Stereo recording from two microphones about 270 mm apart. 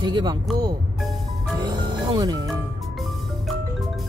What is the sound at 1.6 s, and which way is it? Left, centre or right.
Music, centre.